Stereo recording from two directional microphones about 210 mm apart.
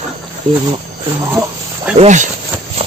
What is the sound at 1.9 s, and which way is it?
Speech, 35° right (ahead or behind).